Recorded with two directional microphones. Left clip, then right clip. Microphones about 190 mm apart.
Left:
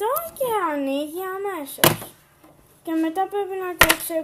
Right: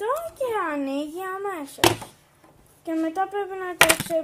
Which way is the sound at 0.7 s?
Centre (ahead or behind).